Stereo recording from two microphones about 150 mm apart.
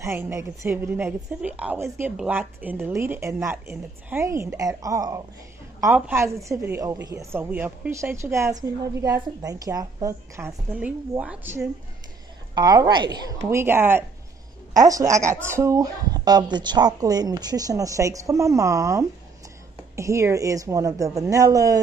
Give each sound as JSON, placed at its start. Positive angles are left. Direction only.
{"t": 0.0, "sound": "speech", "side_deg": -15}
{"t": 12.5, "sound": "speech", "side_deg": -25}
{"t": 13.5, "sound": "speech", "side_deg": -15}